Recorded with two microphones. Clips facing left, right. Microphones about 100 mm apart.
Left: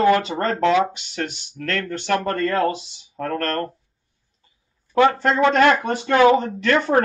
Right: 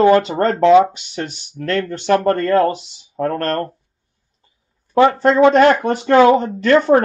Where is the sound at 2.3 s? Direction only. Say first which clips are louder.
Right 5 dB; 45° right (ahead or behind).